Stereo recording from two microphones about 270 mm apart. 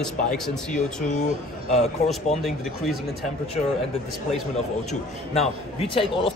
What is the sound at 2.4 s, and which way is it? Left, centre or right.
Speech, centre.